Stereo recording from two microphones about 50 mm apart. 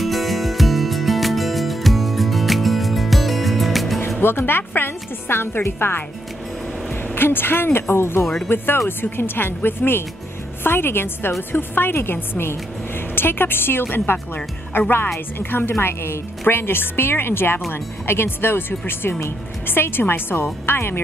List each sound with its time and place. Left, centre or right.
0.0 s music: centre
4.2 s a woman's voice: left
7.2 s a woman's voice: left